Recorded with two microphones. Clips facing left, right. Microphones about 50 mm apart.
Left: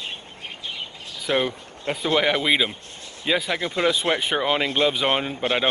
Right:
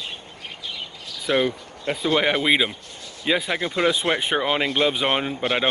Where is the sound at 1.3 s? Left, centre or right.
Centre.